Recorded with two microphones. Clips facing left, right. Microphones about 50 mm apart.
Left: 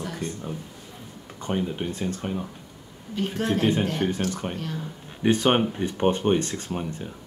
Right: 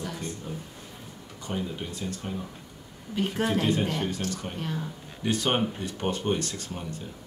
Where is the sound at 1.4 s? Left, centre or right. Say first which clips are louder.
Left 6 dB; left.